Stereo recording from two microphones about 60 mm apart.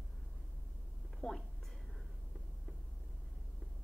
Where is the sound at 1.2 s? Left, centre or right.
Centre.